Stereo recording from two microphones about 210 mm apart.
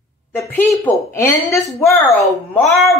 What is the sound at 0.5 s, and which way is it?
A woman's voice, 10° left (ahead or behind).